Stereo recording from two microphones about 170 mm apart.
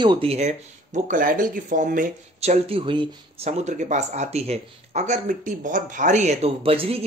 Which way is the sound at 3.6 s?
45° right (ahead or behind).